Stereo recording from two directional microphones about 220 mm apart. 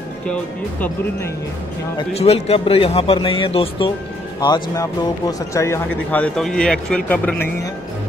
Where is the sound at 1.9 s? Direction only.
25° left (ahead or behind); by 7.7 s 10° left (ahead or behind).